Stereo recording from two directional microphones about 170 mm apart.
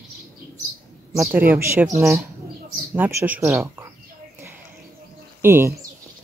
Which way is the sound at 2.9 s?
10° right (ahead or behind).